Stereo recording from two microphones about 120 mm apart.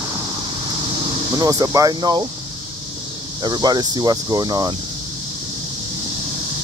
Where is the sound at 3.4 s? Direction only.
35° right (ahead or behind).